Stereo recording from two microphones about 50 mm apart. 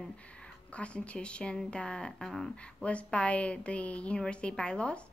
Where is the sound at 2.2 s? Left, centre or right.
Centre.